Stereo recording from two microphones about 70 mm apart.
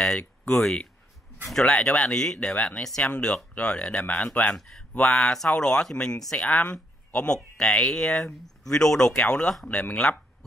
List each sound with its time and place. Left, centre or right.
0.5 s speech: centre
4.5 s speech: centre